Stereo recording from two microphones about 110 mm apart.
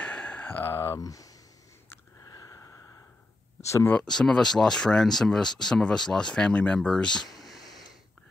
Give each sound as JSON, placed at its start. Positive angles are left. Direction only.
{"t": 0.0, "sound": "a sound", "side_deg": 10}
{"t": 2.2, "sound": "sniff", "side_deg": 35}
{"t": 3.6, "sound": "speech", "side_deg": 25}
{"t": 3.9, "sound": "speech", "side_deg": 5}